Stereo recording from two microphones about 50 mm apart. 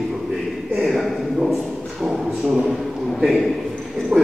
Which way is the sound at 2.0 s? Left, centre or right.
Centre.